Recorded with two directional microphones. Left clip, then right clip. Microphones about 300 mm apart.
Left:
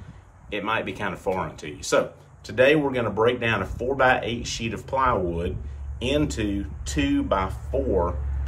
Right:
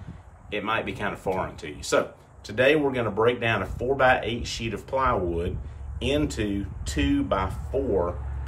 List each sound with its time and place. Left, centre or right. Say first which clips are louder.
0.5 s speech: left 1 dB; centre